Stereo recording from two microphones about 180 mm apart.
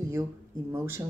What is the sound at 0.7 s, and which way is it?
Speech, 15° right (ahead or behind).